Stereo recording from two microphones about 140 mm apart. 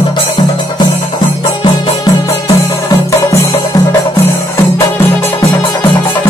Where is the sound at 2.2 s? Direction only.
20° left (ahead or behind).